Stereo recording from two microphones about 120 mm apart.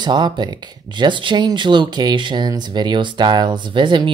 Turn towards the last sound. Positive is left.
turn(degrees=-40)  # may be behind; listen again after turning